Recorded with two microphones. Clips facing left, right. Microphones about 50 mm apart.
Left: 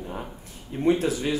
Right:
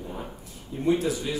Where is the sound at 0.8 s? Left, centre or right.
Left.